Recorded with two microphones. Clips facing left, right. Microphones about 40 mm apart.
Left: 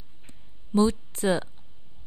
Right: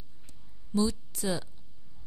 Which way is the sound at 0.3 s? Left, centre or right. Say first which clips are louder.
Left 5 dB; left.